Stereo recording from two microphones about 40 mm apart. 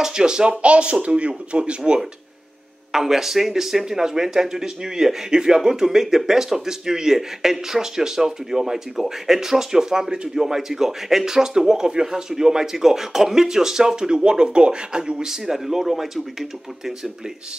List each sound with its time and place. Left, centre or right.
0.0 s speech: centre
2.9 s speech: centre